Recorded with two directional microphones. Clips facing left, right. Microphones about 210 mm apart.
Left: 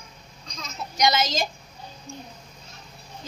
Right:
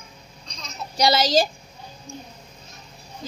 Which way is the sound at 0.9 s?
35° right (ahead or behind).